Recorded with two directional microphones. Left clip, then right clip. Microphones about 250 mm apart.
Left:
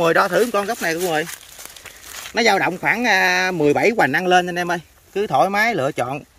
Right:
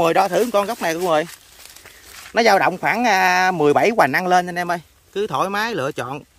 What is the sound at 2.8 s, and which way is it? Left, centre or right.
Speech, right.